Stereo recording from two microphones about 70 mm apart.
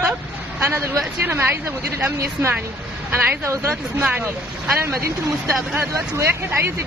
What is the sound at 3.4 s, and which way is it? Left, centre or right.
Speech, right.